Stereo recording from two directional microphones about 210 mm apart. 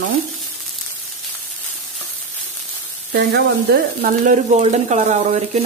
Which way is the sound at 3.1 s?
50° right (ahead or behind).